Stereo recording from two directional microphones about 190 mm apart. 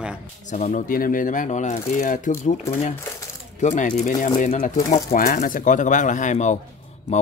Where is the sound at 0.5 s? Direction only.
40° left (ahead or behind).